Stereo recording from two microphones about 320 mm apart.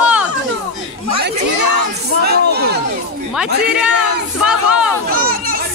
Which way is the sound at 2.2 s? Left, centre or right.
Right.